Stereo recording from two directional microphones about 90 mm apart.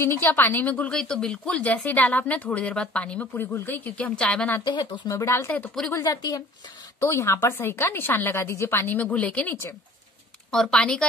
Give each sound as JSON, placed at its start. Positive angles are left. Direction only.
{"t": 0.0, "sound": "a woman's voice", "side_deg": 25}
{"t": 4.6, "sound": "speech", "side_deg": 50}
{"t": 5.1, "sound": "speech", "side_deg": 30}
{"t": 5.9, "sound": "speech", "side_deg": 45}
{"t": 7.0, "sound": "a woman's voice", "side_deg": 30}